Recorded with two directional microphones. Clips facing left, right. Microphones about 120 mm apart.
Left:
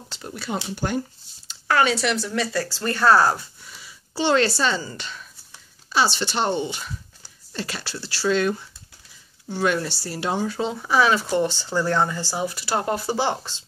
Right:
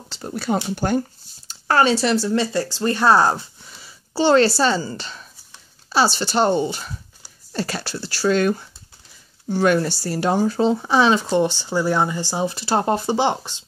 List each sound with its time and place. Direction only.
0.2 s speech: 40° right (ahead or behind)
1.5 s speech: 35° right (ahead or behind); by 13.7 s 20° right (ahead or behind)